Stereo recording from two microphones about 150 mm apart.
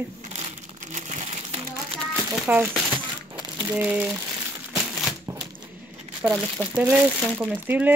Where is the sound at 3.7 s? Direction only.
10° right (ahead or behind).